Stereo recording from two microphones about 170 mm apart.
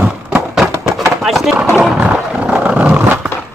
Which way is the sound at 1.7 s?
5° right (ahead or behind).